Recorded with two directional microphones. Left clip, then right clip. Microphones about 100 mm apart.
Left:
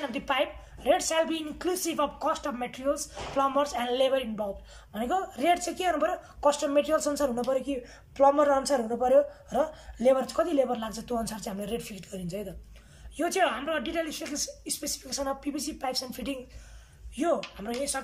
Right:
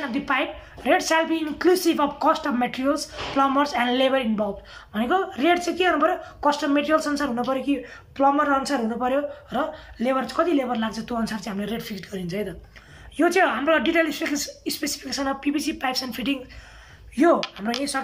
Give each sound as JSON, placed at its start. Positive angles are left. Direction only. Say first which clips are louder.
{"t": 0.1, "sound": "a woman's voice", "louder": "right 4 dB", "side_deg": 30}
{"t": 4.9, "sound": "speech", "louder": "right 6 dB", "side_deg": 45}
{"t": 7.4, "sound": "speech", "louder": "right 4 dB", "side_deg": 35}
{"t": 13.1, "sound": "a woman's voice", "louder": "right 7 dB", "side_deg": 25}
{"t": 17.1, "sound": "a woman's voice", "louder": "right 9 dB", "side_deg": 20}